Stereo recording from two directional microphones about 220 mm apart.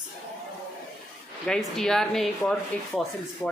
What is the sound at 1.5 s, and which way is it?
Speech, centre (ahead or behind).